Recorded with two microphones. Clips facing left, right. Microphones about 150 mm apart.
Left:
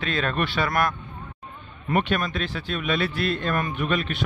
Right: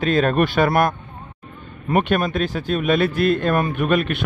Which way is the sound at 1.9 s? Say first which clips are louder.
Right 5 dB; 50° right (ahead or behind).